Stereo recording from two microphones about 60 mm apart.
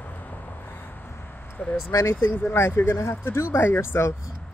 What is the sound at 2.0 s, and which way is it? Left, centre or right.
Speech, left.